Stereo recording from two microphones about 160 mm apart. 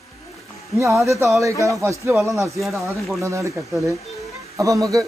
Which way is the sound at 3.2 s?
20° right (ahead or behind).